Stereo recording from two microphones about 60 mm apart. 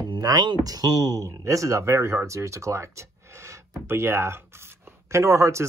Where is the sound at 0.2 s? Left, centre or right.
Right.